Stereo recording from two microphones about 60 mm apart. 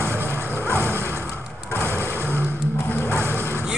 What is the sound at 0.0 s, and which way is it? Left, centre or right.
Music, right.